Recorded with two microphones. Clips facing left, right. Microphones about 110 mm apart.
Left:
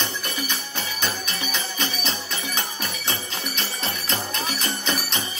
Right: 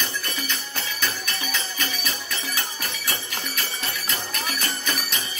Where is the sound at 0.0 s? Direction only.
20° left (ahead or behind).